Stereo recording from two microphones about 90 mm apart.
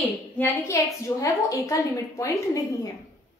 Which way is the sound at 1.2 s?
35° left (ahead or behind).